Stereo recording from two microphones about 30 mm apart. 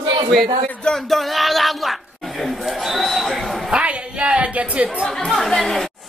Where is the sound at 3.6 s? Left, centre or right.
Right.